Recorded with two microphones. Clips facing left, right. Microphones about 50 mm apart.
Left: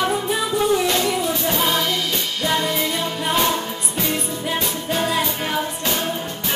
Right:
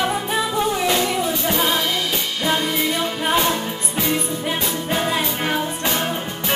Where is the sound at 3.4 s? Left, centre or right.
Centre.